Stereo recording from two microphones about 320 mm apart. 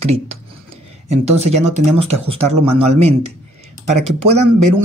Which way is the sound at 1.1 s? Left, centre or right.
Centre.